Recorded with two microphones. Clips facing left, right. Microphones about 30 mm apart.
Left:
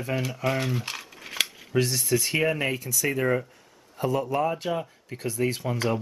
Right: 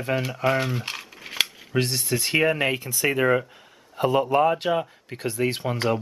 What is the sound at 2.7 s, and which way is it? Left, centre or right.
Speech, right.